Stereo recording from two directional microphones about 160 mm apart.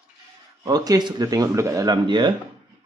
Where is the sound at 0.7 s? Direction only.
25° right (ahead or behind).